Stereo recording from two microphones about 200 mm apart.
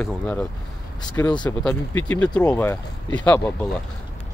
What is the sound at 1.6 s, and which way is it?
Speech, 5° left (ahead or behind).